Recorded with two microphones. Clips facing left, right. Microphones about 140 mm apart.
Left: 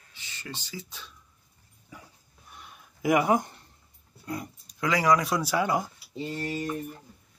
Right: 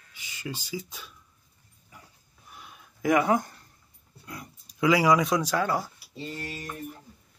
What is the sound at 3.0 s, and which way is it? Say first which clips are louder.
Speech: even; 15° left (ahead or behind).